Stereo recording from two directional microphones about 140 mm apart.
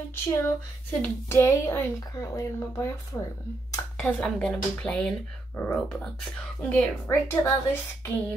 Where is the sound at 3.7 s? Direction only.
15° left (ahead or behind).